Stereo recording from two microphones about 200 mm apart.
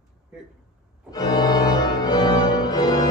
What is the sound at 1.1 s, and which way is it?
Organ, 20° left (ahead or behind).